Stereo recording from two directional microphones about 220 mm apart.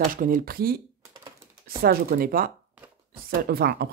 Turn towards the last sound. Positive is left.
turn(degrees=-45)  # may be behind; listen again after turning